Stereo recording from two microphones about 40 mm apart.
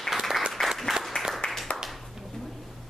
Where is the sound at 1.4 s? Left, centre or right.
Left.